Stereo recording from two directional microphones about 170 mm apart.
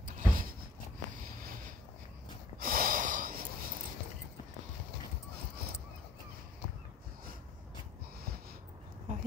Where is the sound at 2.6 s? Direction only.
55° right (ahead or behind).